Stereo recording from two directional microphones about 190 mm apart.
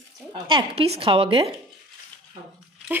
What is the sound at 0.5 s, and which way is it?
Speech, 30° right (ahead or behind).